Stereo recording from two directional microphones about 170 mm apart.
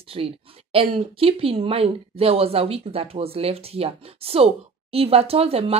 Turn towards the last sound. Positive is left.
turn(degrees=-35)  # may be behind; listen again after turning